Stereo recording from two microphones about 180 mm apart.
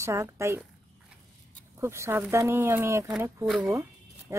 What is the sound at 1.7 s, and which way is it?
Speech, 15° right (ahead or behind).